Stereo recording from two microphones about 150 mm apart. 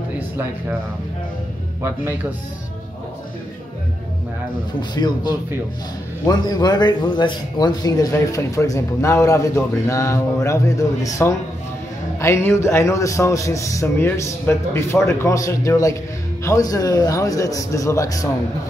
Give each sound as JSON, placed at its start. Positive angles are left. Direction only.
{"t": 1.8, "sound": "speech", "side_deg": -15}
{"t": 4.9, "sound": "speech", "side_deg": 30}